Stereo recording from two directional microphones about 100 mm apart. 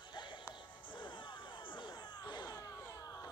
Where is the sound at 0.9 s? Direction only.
55° left (ahead or behind).